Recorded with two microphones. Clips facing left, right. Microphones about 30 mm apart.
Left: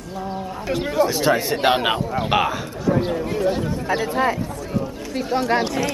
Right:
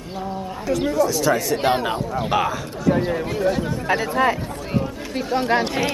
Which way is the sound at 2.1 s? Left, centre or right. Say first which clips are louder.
Right 1 dB; centre.